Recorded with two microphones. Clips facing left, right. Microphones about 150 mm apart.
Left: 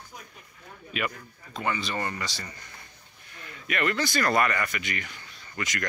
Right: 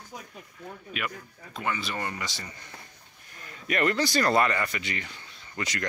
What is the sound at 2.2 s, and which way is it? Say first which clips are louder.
Speech: left 1 dB; 20° right (ahead or behind).